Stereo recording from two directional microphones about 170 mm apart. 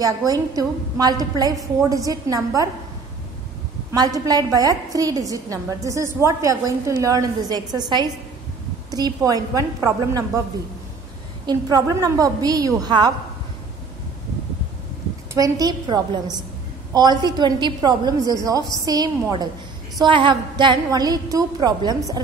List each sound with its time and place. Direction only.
0.0 s a woman's voice: 20° right (ahead or behind)
3.9 s a woman's voice: 20° right (ahead or behind)
11.4 s a woman's voice: 20° right (ahead or behind)
15.3 s a woman's voice: 20° right (ahead or behind)
20.0 s a woman's voice: 30° right (ahead or behind)